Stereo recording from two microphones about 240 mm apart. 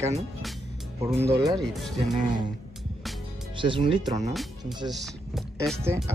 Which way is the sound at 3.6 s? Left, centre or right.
Right.